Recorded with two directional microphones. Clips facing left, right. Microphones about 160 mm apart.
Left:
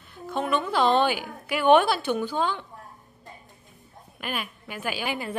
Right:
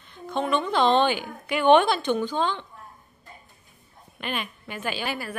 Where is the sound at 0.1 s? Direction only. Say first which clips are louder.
Right 1 dB; 5° left (ahead or behind).